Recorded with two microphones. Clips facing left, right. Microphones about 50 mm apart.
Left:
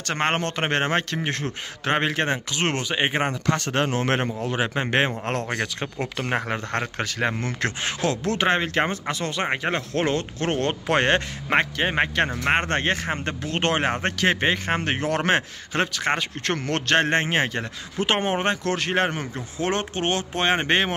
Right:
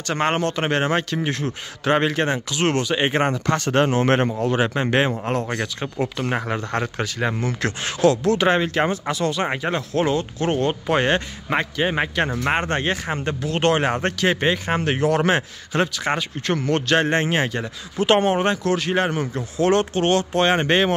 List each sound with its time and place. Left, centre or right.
0.0 s speech: left
2.0 s speech: left
2.8 s speech: centre
3.3 s speech: centre
4.7 s speech: left
5.3 s speech: left
5.8 s speech: left
6.2 s speech: left
11.9 s speech: left
19.3 s speech: left